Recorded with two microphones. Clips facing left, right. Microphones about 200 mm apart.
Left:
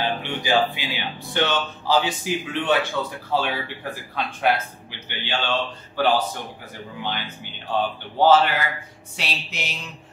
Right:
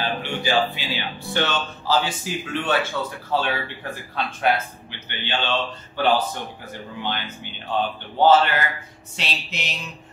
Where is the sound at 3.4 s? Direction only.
10° left (ahead or behind).